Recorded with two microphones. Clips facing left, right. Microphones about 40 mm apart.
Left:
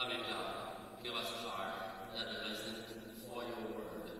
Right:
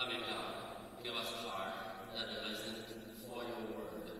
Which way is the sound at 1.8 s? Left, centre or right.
Left.